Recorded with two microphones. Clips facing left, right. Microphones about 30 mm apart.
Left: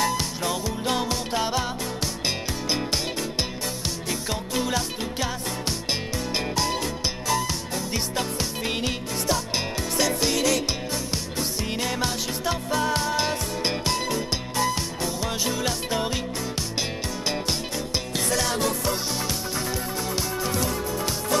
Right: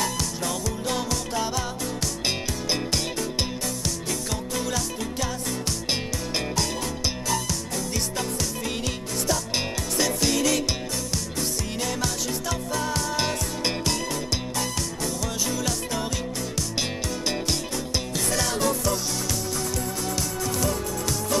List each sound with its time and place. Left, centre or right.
0.0 s music: left
3.8 s music: left
7.2 s music: left
11.3 s music: left
18.3 s music: centre
20.2 s music: left